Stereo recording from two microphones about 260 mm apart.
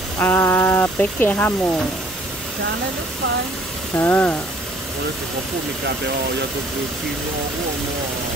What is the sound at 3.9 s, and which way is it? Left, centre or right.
Speech, centre.